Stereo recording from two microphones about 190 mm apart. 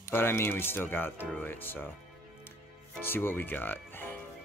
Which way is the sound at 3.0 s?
10° left (ahead or behind).